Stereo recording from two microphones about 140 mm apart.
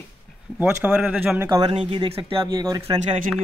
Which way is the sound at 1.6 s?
35° right (ahead or behind).